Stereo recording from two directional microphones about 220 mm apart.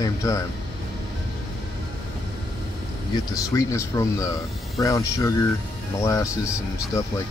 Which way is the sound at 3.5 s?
15° left (ahead or behind).